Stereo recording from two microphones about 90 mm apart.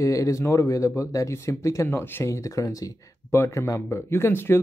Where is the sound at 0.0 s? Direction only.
35° left (ahead or behind).